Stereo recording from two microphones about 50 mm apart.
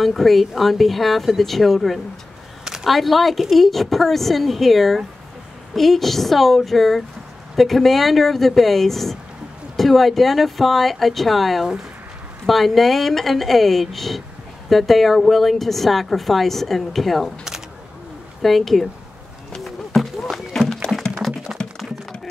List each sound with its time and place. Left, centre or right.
0.0 s a woman's voice: centre
18.4 s a woman's voice: centre
19.6 s a sound: centre
21.6 s typing: centre